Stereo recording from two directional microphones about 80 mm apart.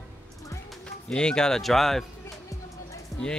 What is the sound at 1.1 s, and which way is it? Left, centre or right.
Speech, centre.